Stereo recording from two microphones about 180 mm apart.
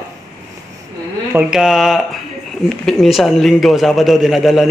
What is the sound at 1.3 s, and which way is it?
A man's voice, 5° right (ahead or behind).